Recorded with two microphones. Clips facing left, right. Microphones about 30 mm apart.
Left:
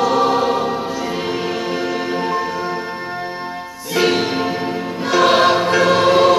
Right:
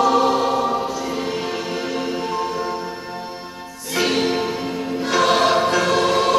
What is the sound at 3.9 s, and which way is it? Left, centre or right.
Music, centre.